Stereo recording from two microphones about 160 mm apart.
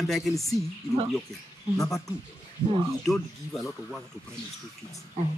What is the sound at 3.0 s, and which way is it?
Speech, centre (ahead or behind).